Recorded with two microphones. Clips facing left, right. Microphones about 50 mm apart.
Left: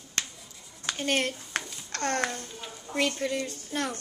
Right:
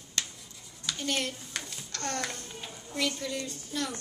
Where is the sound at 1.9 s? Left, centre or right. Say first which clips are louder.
Left 6 dB; left.